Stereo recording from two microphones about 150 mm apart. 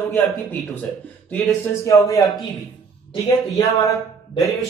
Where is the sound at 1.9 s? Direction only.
20° left (ahead or behind).